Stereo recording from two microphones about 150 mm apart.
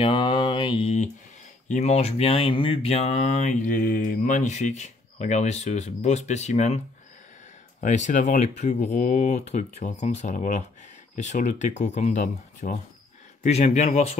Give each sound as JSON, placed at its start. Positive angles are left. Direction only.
{"t": 0.0, "sound": "mantra", "side_deg": 35}
{"t": 1.7, "sound": "speech", "side_deg": 50}
{"t": 7.8, "sound": "speech", "side_deg": 55}
{"t": 13.4, "sound": "speech", "side_deg": 45}